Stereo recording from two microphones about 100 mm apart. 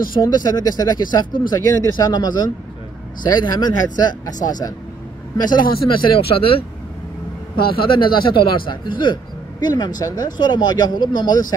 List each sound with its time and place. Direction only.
0.3 s a man's voice: 45° left (ahead or behind)
5.5 s a man's voice: 60° left (ahead or behind)